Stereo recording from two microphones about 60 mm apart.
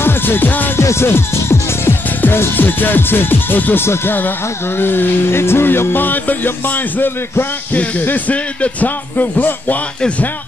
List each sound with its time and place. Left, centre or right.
0.0 s music: left
0.7 s speech: left
4.7 s music: left